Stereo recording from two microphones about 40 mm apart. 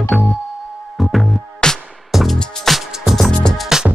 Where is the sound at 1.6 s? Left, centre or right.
Centre.